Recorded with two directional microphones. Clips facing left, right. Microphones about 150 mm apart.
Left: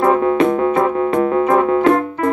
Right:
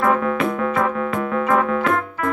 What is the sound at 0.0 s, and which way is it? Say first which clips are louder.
Keyboard: left 5 dB; 30° left (ahead or behind).